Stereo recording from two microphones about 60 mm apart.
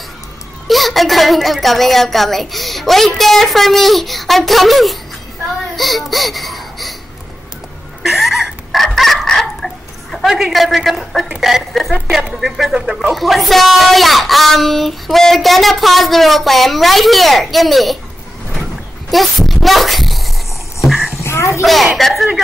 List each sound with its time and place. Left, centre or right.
0.7 s speech: centre
5.8 s laughter: centre
8.0 s chicken: centre
10.1 s speech: centre
12.7 s speech: centre
13.1 s speech: centre
19.0 s a sound: centre
21.2 s a sound: left
21.9 s speech: centre